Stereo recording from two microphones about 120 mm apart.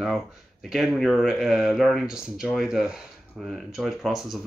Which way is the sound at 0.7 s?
5° right (ahead or behind).